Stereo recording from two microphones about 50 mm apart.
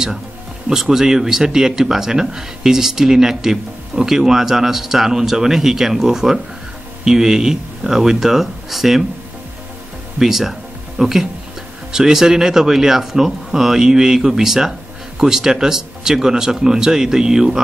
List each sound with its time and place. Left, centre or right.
0.7 s speech: centre
10.1 s speech: centre